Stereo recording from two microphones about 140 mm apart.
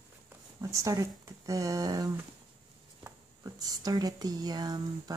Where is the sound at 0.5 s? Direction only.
25° right (ahead or behind).